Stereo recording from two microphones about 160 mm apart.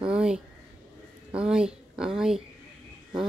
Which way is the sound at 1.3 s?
5° right (ahead or behind).